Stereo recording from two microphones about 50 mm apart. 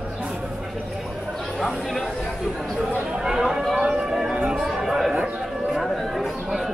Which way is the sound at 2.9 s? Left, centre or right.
Right.